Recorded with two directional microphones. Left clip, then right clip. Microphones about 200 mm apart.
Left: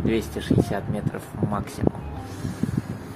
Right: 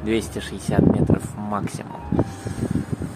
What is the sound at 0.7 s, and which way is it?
Speech, 15° right (ahead or behind).